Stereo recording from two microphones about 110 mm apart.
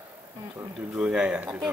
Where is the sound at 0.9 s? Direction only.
10° right (ahead or behind).